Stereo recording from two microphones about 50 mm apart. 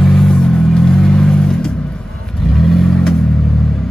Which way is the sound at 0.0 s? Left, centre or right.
Centre.